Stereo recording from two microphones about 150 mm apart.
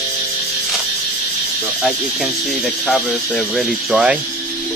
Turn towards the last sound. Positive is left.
turn(degrees=-5)  # may be behind; listen again after turning